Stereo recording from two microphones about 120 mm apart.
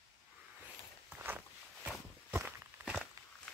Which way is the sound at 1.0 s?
20° right (ahead or behind).